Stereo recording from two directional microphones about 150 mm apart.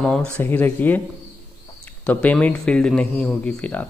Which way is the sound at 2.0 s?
10° left (ahead or behind).